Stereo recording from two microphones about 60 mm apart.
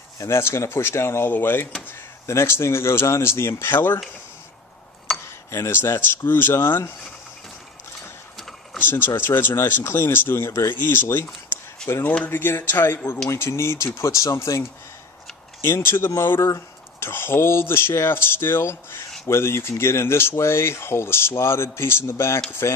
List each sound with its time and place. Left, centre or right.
0.2 s speech: left
2.2 s speech: left
5.2 s a sound: left
5.8 s speech: left
8.8 s speech: left
10.7 s speech: left
11.8 s speech: centre
12.3 s speech: left
13.3 s speech: left
15.6 s speech: left
16.1 s speech: left
17.1 s speech: left